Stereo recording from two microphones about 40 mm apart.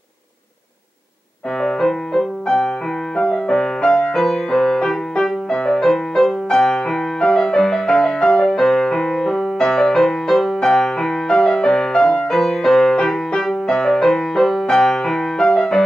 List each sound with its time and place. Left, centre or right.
1.6 s music: centre